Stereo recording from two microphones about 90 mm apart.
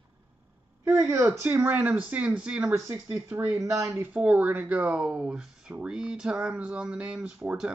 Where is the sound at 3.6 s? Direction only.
35° right (ahead or behind).